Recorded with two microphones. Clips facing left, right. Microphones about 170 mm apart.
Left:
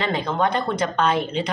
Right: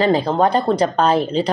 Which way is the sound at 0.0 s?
35° right (ahead or behind).